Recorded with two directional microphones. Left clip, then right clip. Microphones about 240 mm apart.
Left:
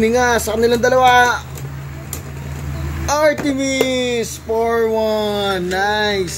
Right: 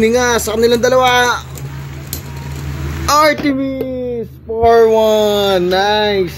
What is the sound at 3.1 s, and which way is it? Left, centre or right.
Speech, centre.